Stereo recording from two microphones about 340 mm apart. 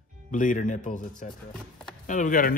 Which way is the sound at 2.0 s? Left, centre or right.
Left.